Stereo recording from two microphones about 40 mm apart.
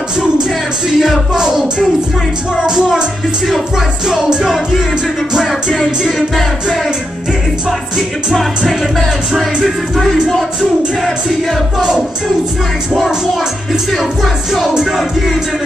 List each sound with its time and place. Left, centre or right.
0.9 s music: centre
2.5 s music: centre
6.0 s music: centre
8.3 s music: centre
14.2 s music: centre